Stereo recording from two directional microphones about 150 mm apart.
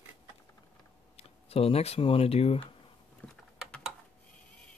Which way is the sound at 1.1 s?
40° left (ahead or behind).